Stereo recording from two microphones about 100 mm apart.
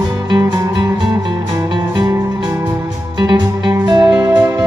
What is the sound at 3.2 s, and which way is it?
Music, 45° right (ahead or behind).